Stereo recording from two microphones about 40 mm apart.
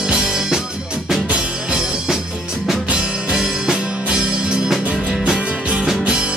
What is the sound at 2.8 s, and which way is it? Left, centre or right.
Music, right.